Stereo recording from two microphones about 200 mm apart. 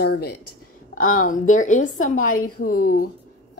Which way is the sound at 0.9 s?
45° left (ahead or behind).